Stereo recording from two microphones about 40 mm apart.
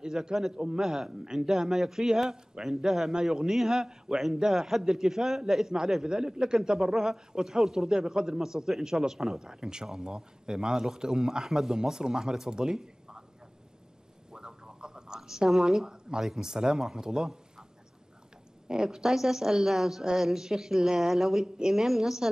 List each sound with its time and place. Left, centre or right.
0.0 s speech: centre
14.3 s a sound: centre
15.1 s a woman's voice: centre
18.7 s speech: centre